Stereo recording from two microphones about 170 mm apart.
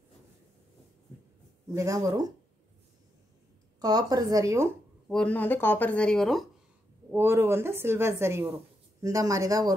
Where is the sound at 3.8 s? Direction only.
25° right (ahead or behind).